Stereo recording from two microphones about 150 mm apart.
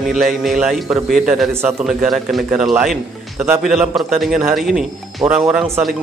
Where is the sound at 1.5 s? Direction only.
15° right (ahead or behind).